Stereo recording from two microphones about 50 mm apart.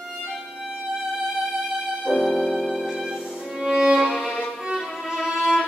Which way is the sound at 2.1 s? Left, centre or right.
Centre.